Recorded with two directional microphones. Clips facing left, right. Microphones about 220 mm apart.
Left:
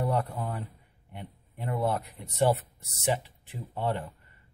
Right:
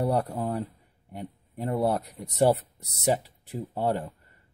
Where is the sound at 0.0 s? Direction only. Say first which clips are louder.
Right 3 dB; 40° right (ahead or behind).